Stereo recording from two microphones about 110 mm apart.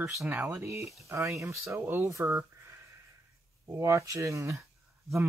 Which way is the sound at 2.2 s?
20° right (ahead or behind).